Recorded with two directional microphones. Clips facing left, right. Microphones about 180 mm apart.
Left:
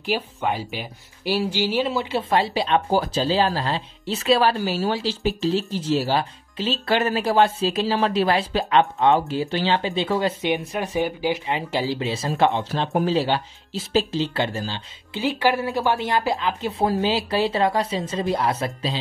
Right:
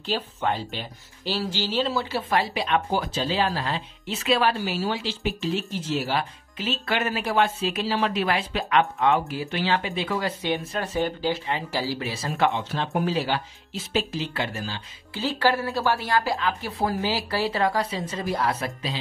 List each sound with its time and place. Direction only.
0.0 s speech: 10° left (ahead or behind); by 10.3 s 30° left (ahead or behind)
10.4 s speech: 15° left (ahead or behind)
12.5 s speech: 35° left (ahead or behind)
15.1 s speech: 15° left (ahead or behind)